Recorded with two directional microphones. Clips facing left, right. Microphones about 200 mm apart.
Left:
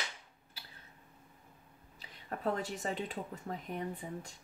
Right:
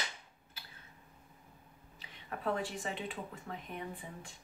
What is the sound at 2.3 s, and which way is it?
Speech, 40° left (ahead or behind).